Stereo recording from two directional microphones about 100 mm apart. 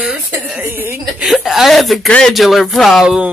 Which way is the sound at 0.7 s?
20° right (ahead or behind).